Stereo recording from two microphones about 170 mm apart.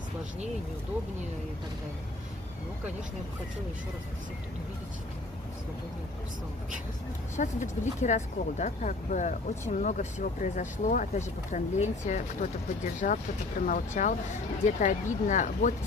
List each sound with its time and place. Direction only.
7.3 s speech: 45° left (ahead or behind)